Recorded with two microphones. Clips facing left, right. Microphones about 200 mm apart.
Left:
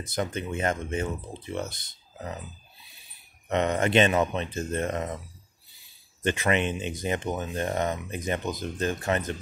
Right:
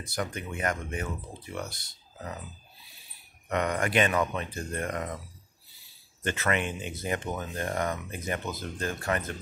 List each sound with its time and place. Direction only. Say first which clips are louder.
0.0 s speech: left 4 dB; 20° left (ahead or behind)
3.4 s speech: left 4 dB; 25° left (ahead or behind)
6.2 s speech: left 4 dB; 20° left (ahead or behind)